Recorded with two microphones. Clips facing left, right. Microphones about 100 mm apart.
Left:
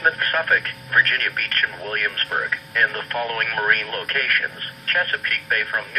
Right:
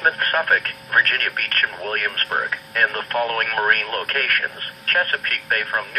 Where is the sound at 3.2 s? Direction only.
45° right (ahead or behind).